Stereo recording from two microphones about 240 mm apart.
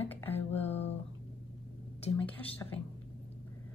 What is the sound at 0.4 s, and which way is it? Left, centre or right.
Music, left.